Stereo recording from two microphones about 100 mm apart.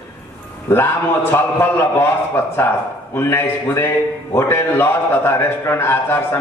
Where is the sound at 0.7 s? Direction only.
25° left (ahead or behind).